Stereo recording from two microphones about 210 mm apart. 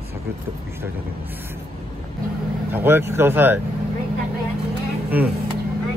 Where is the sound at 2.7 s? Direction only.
10° right (ahead or behind).